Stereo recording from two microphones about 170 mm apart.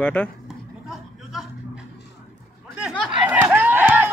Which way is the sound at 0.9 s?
Centre (ahead or behind).